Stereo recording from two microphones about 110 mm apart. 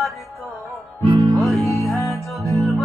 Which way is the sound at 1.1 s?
35° right (ahead or behind).